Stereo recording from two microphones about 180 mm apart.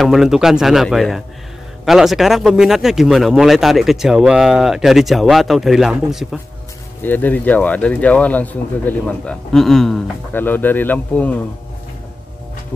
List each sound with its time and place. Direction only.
0.0 s speech: centre (ahead or behind)
7.0 s speech: 10° left (ahead or behind)